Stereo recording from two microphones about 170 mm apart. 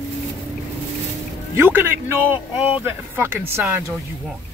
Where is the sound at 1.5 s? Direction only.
15° right (ahead or behind).